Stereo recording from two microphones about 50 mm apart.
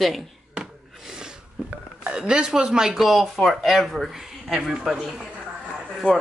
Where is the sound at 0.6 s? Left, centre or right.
Centre.